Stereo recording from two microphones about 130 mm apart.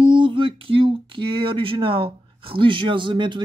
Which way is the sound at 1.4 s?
45° right (ahead or behind).